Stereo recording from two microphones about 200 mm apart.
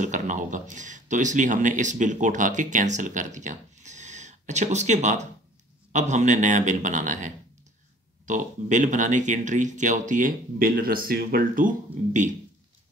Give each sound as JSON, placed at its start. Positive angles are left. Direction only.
{"t": 0.0, "sound": "speech", "side_deg": -40}